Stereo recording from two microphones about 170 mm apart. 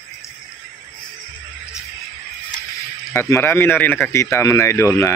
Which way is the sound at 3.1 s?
15° left (ahead or behind).